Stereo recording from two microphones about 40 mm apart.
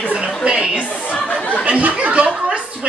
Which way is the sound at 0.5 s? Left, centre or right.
Right.